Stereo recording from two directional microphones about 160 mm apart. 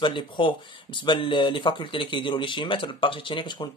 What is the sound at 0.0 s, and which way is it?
Speech, 30° left (ahead or behind).